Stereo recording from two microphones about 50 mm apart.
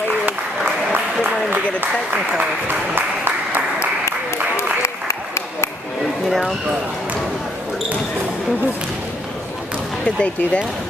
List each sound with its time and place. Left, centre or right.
0.9 s applause: right
2.7 s applause: right
4.6 s applause: left
6.2 s speech: centre
10.0 s speech: left